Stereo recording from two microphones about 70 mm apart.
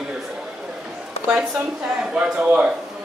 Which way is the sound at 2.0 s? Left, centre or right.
Centre.